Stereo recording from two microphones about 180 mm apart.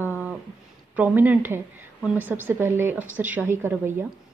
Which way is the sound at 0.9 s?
10° right (ahead or behind).